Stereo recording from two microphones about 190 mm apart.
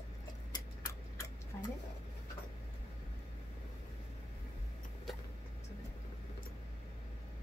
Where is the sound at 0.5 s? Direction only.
15° left (ahead or behind).